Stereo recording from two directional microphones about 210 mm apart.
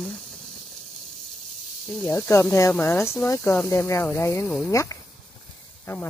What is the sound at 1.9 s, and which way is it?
Speech, 5° left (ahead or behind).